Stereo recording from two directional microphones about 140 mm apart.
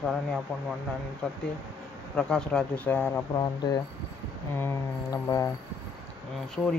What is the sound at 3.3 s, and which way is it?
Speech, 30° left (ahead or behind).